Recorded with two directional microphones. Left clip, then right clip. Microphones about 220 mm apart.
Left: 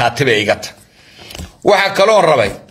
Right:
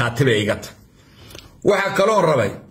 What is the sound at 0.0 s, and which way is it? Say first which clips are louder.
A man's voice: left 6 dB; 15° right (ahead or behind).